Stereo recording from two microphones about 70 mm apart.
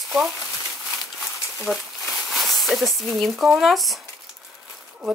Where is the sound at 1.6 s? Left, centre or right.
Centre.